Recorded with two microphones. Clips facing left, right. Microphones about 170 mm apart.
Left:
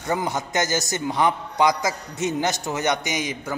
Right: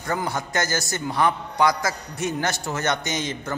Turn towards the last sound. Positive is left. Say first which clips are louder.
# even
turn(degrees=10)  # may be behind; listen again after turning